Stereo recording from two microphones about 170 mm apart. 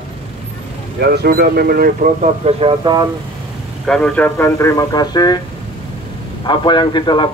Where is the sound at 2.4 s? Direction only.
30° right (ahead or behind).